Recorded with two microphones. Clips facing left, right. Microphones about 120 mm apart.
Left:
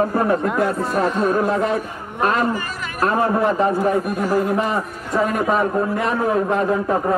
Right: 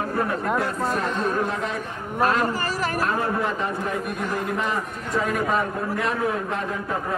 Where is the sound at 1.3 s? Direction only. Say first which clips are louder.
Left 7 dB; 45° left (ahead or behind).